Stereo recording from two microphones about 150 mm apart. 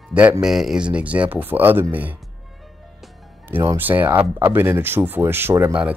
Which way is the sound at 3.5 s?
15° right (ahead or behind).